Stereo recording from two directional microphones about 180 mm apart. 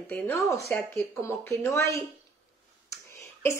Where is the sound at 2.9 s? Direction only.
15° left (ahead or behind).